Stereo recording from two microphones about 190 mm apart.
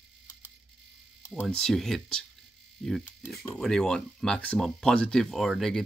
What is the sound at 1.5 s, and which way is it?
Speech, centre (ahead or behind).